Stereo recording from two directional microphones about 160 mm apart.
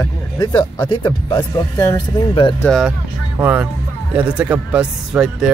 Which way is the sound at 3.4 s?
10° right (ahead or behind).